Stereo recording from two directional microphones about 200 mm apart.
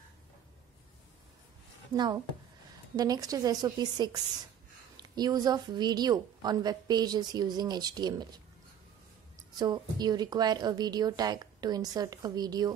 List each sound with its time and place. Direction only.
3.0 s a woman's voice: 20° right (ahead or behind)
9.6 s a woman's voice: 20° right (ahead or behind)